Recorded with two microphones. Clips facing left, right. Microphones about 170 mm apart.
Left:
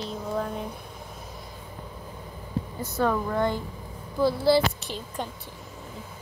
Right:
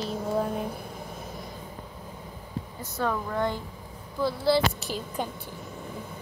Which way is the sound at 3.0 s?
10° left (ahead or behind).